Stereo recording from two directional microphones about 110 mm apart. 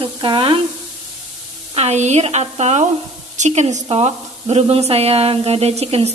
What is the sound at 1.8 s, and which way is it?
Speech, 85° right.